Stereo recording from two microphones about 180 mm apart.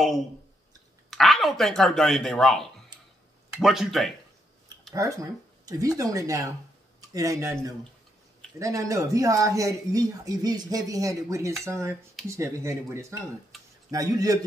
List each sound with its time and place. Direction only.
1.1 s speech: centre (ahead or behind)
4.9 s speech: 20° right (ahead or behind)